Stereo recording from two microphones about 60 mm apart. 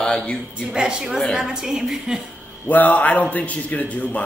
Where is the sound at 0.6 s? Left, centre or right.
Centre.